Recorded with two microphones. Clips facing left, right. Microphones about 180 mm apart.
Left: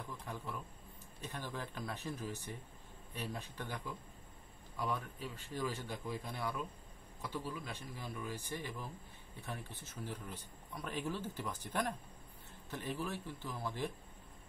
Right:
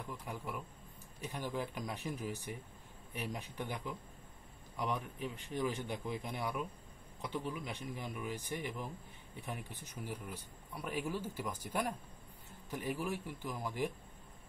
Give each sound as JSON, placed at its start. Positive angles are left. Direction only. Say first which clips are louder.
{"t": 0.0, "sound": "speech", "louder": "right 2 dB", "side_deg": -10}